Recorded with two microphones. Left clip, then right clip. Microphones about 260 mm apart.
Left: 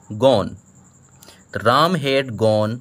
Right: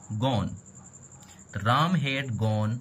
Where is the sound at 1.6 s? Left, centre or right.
Left.